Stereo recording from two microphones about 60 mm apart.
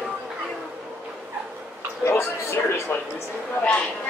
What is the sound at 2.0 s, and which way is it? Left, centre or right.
Speech, left.